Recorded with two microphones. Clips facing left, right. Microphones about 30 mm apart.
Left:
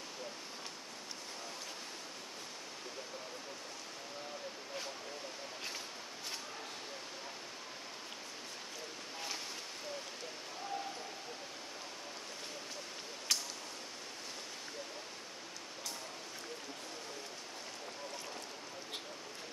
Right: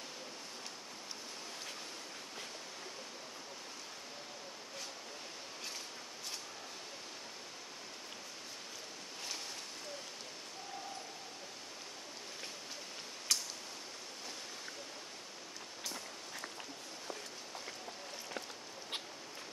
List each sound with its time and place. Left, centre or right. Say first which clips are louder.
13.3 s tick: even; centre